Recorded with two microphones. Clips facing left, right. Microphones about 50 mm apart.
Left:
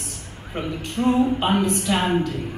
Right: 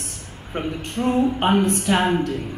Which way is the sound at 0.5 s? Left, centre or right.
Right.